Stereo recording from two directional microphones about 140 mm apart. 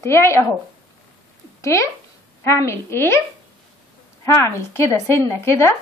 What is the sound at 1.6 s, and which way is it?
A woman's voice, 20° left (ahead or behind).